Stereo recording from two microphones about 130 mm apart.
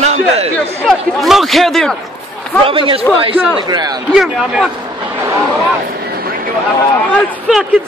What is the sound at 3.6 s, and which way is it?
Speech, 30° right (ahead or behind).